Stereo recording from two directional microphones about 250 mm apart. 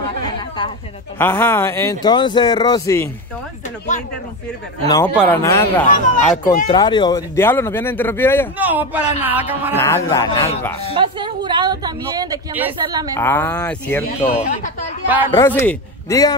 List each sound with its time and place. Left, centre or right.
1.1 s a man's voice: centre
4.8 s a man's voice: centre
8.5 s speech: centre
9.8 s a man's voice: centre
10.9 s speech: centre
13.1 s a man's voice: centre
14.2 s speech: left
15.3 s a man's voice: centre